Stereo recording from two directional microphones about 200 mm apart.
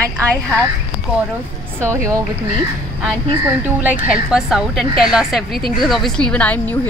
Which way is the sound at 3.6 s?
5° right (ahead or behind).